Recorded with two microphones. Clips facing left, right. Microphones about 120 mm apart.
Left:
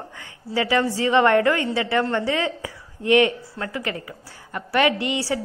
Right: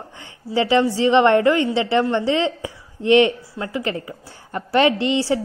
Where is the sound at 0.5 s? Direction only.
25° right (ahead or behind).